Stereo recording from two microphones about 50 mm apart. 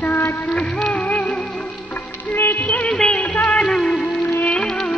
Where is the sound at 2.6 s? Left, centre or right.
Left.